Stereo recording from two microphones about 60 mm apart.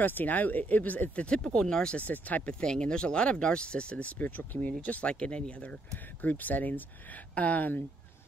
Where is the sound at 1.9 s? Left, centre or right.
Left.